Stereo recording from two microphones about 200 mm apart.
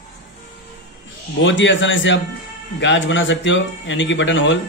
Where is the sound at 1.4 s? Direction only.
65° left (ahead or behind).